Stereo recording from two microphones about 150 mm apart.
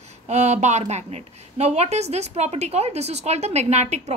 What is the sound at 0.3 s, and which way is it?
A woman's voice, 50° right (ahead or behind).